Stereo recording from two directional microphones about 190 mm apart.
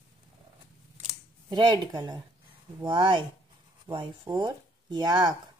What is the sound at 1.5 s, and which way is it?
Speech, 25° right (ahead or behind).